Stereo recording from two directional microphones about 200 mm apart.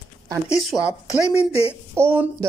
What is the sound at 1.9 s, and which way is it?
Speech, 10° right (ahead or behind).